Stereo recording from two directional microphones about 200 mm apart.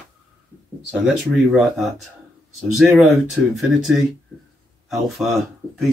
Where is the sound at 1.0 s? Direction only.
5° right (ahead or behind).